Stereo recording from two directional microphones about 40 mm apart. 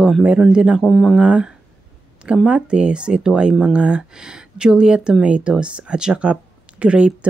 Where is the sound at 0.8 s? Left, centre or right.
Centre.